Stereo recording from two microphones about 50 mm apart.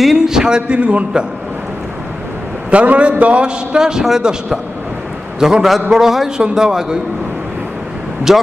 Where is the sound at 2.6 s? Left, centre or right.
Right.